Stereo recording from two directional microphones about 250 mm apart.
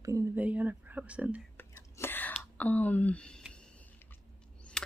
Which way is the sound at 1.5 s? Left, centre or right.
Centre.